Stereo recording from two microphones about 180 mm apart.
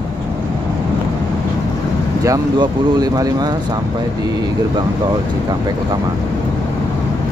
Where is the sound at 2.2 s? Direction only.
20° right (ahead or behind).